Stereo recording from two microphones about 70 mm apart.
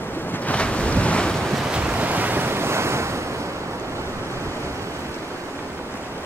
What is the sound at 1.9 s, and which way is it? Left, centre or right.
Waves, right.